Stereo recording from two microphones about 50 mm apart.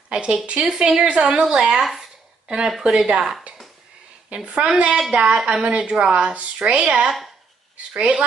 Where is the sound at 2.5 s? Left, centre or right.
Centre.